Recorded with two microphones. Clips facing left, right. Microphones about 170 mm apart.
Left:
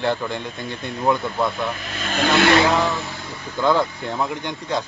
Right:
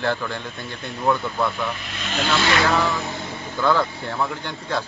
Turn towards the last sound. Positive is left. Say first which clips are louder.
# left 2 dB
turn(degrees=15)  # may be behind; listen again after turning